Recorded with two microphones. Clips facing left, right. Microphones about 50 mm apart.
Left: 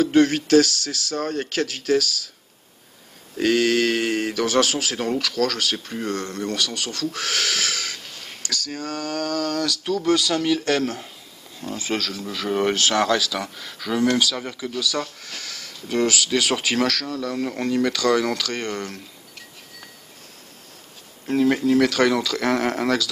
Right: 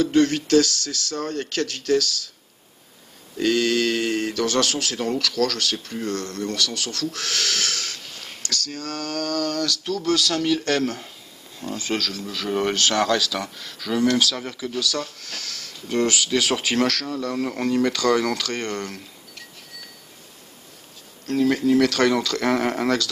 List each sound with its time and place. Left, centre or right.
0.0 s speech: centre
3.4 s speech: centre
21.3 s speech: centre